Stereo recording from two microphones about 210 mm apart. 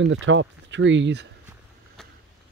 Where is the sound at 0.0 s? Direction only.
65° right (ahead or behind).